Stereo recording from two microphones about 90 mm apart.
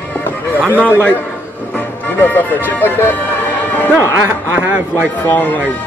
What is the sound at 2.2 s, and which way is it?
Speech, 20° left (ahead or behind).